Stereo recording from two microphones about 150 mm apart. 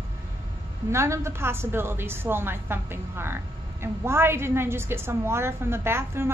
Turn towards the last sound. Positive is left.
turn(degrees=-15)  # may be behind; listen again after turning